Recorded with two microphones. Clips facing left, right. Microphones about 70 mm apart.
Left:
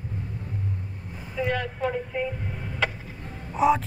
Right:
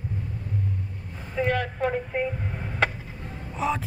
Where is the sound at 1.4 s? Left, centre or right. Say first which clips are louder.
Right 2 dB; right.